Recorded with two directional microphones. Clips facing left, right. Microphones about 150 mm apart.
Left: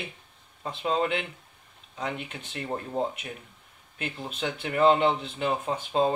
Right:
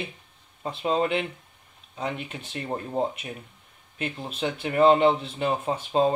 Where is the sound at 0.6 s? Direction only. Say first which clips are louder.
Right 2 dB; 30° right (ahead or behind).